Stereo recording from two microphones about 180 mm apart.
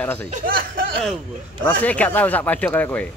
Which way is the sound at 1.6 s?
10° left (ahead or behind).